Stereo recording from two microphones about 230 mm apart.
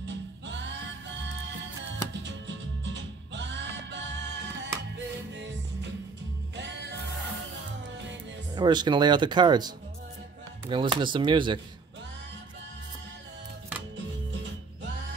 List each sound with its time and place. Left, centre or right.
0.0 s music: right
8.5 s speech: centre